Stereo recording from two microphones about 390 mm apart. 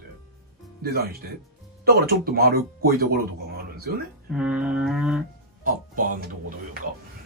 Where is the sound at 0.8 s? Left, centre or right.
Right.